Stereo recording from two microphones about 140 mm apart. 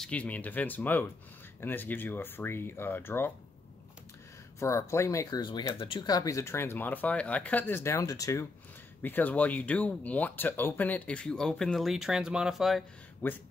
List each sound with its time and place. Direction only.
0.0 s speech: 10° left (ahead or behind)
4.6 s speech: 20° left (ahead or behind)
9.0 s speech: 15° left (ahead or behind)